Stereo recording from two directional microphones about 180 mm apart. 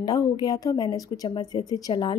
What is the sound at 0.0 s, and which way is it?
Speech, 20° left (ahead or behind).